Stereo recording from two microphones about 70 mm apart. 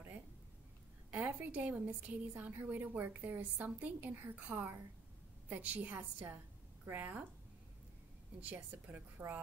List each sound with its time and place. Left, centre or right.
1.1 s a woman's voice: right
8.4 s a woman's voice: right